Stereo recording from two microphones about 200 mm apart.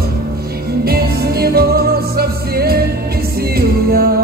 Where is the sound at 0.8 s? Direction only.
50° right (ahead or behind).